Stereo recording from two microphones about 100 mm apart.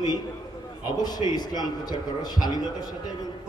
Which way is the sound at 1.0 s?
40° left (ahead or behind).